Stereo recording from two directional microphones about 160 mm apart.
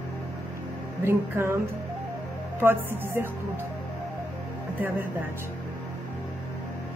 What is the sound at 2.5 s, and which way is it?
Speech, 15° right (ahead or behind).